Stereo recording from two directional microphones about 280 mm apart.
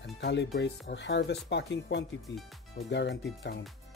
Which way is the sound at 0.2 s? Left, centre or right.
Left.